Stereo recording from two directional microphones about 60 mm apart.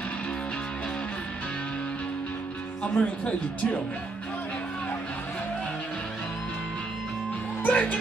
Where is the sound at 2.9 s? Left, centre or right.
Left.